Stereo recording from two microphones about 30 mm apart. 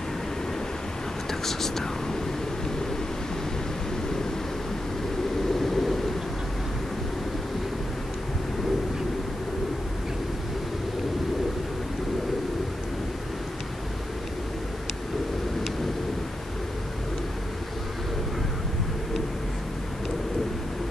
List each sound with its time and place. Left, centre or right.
1.4 s speech: centre
5.6 s vehicle: centre